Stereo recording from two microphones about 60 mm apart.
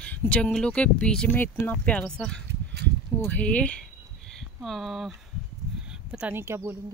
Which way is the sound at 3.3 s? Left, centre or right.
Left.